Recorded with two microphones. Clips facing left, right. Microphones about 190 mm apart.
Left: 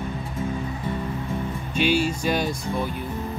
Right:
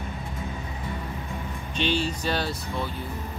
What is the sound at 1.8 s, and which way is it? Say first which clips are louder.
Speech: left 5 dB; 10° left (ahead or behind).